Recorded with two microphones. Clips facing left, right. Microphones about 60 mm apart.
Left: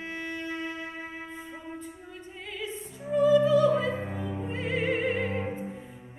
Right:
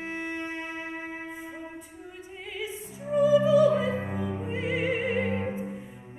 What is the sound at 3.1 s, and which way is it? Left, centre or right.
Music, centre.